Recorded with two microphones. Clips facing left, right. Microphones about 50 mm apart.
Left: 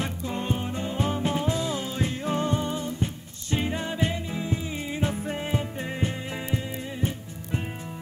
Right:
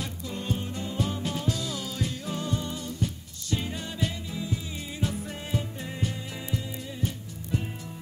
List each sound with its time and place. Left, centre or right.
0.0 s music: left